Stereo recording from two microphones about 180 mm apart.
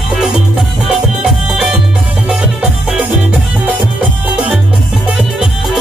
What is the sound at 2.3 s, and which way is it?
Music, 5° right (ahead or behind).